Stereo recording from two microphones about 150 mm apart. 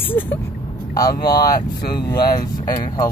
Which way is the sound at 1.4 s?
85° left.